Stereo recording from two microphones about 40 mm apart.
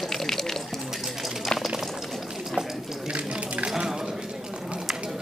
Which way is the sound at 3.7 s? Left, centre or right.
Centre.